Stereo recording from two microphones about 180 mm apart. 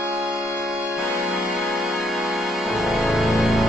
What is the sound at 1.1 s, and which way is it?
Music, centre (ahead or behind).